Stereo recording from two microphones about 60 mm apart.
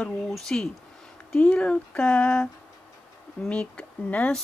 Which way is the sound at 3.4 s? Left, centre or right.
Centre.